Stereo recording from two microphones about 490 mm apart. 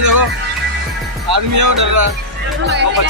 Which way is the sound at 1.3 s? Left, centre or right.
Right.